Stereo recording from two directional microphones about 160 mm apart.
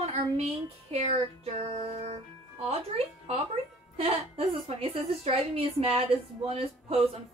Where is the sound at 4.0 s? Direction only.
35° right (ahead or behind).